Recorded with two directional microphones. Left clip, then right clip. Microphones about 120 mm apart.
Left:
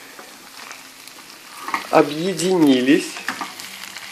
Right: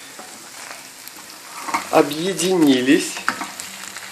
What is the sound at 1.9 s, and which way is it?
Speech, 30° left (ahead or behind).